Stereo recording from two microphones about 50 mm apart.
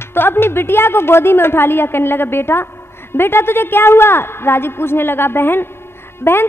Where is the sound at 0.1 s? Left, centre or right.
Left.